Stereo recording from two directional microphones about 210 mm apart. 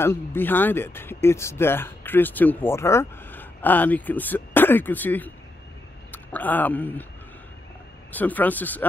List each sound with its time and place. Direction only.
0.0 s speech: 10° left (ahead or behind)
8.1 s speech: 10° left (ahead or behind)